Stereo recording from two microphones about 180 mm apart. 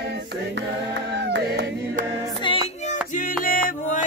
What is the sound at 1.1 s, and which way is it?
Music, 70° right (ahead or behind).